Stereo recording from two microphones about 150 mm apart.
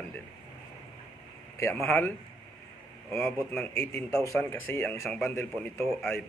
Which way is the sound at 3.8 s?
5° left (ahead or behind).